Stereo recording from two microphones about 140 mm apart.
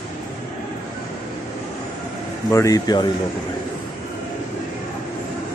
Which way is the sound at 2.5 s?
25° left (ahead or behind).